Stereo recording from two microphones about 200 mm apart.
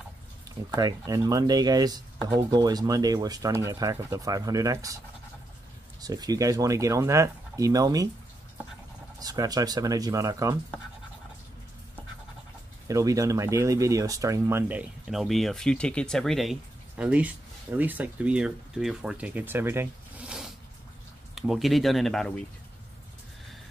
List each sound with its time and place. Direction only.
0.7 s speech: 20° right (ahead or behind)
5.9 s speech: 20° right (ahead or behind)
9.2 s speech: 20° right (ahead or behind)
12.8 s speech: 15° right (ahead or behind); by 22.4 s centre (ahead or behind)